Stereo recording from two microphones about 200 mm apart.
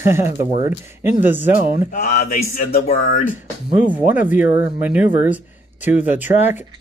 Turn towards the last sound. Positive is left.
turn(degrees=-10)  # may be behind; listen again after turning